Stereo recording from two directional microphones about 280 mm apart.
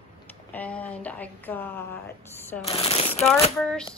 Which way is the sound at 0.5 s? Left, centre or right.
Centre.